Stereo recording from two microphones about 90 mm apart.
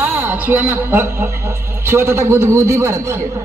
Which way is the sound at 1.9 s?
30° right (ahead or behind).